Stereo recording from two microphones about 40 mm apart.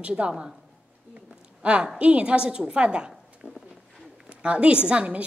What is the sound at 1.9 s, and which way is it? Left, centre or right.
A woman's voice, right.